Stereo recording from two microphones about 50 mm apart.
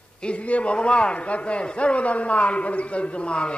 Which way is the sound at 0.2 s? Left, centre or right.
Left.